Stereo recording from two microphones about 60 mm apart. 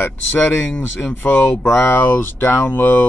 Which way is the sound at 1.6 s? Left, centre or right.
Left.